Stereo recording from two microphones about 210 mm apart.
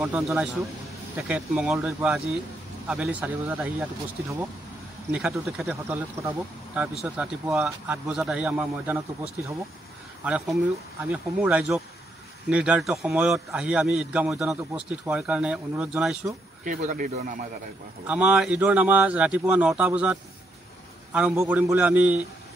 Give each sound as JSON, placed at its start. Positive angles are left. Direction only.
{"t": 0.0, "sound": "a man's voice", "side_deg": -5}
{"t": 5.1, "sound": "a man's voice", "side_deg": 0}
{"t": 16.6, "sound": "speech", "side_deg": -40}
{"t": 18.0, "sound": "speech", "side_deg": -5}